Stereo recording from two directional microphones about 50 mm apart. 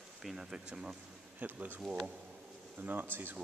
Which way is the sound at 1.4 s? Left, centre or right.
Right.